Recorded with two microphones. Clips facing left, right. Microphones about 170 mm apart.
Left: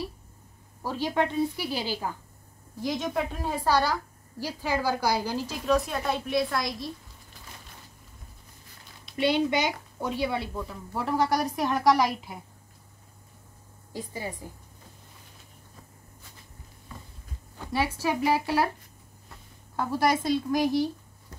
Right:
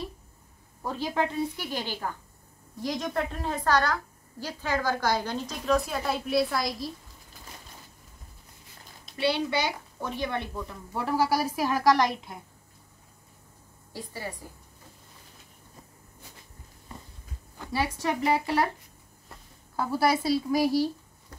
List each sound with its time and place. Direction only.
0.8 s a woman's voice: centre (ahead or behind)
9.1 s a woman's voice: 20° left (ahead or behind); by 12.4 s 5° left (ahead or behind)
13.9 s a woman's voice: 15° left (ahead or behind)
18.0 s a woman's voice: 5° left (ahead or behind)
19.8 s a woman's voice: 5° right (ahead or behind)